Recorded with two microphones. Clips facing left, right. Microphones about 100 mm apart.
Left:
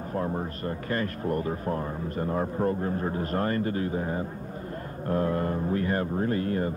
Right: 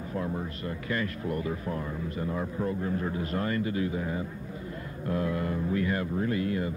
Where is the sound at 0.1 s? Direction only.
45° left (ahead or behind).